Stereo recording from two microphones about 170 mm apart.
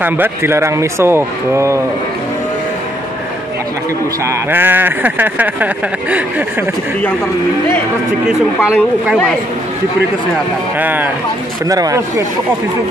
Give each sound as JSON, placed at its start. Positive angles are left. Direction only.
{"t": 0.0, "sound": "speech", "side_deg": -15}
{"t": 4.3, "sound": "speech", "side_deg": -10}
{"t": 8.5, "sound": "speech", "side_deg": -5}
{"t": 10.8, "sound": "speech", "side_deg": -10}